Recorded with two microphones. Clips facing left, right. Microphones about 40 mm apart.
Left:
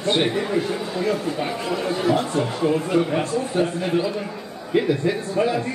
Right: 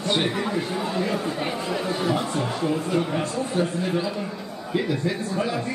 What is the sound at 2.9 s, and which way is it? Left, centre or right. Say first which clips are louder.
Speech: left 4 dB; centre.